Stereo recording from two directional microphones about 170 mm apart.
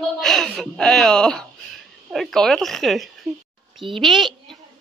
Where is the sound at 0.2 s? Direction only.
Centre (ahead or behind).